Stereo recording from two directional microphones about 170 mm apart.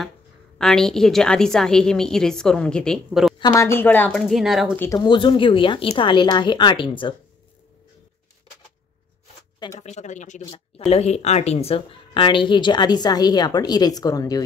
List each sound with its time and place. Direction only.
0.6 s a woman's voice: 5° left (ahead or behind)
3.3 s speech: 20° left (ahead or behind)
4.3 s a woman's voice: centre (ahead or behind)
4.7 s a woman's voice: 20° left (ahead or behind)
9.8 s a woman's voice: 45° left (ahead or behind); by 14.4 s 20° left (ahead or behind)